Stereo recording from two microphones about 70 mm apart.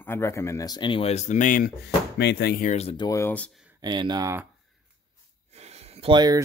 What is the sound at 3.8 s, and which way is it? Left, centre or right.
Speech, right.